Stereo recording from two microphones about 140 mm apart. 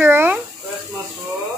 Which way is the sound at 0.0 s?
15° right (ahead or behind).